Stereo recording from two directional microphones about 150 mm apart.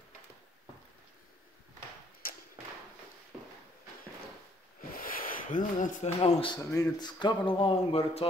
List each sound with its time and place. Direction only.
4.9 s a sound: 70° left (ahead or behind)
6.1 s speech: 45° left (ahead or behind)
6.5 s a man's voice: 25° left (ahead or behind); by 8.3 s 40° left (ahead or behind)